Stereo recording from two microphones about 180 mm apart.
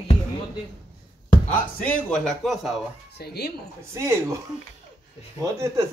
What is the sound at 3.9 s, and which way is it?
Speech, 15° right (ahead or behind).